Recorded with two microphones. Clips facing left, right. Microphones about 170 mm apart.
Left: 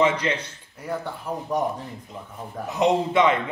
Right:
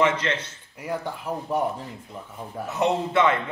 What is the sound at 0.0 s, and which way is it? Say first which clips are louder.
Speech: left 1 dB; 10° left (ahead or behind).